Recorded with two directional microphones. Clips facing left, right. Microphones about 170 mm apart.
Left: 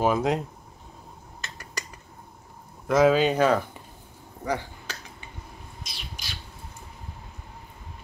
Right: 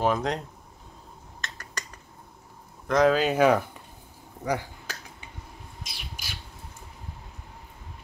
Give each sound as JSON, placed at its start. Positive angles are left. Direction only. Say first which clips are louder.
{"t": 0.0, "sound": "speech", "louder": "left 2 dB", "side_deg": 10}
{"t": 1.4, "sound": "a sound", "louder": "left 1 dB", "side_deg": 10}
{"t": 2.9, "sound": "speech", "louder": "left 2 dB", "side_deg": 5}
{"t": 4.5, "sound": "finger snapping", "louder": "even", "side_deg": -10}
{"t": 5.9, "sound": "bird", "louder": "left 1 dB", "side_deg": -10}